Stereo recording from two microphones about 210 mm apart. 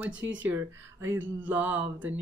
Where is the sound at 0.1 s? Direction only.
60° right (ahead or behind).